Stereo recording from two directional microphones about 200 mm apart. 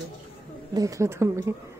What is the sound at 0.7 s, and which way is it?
Speech, 15° right (ahead or behind).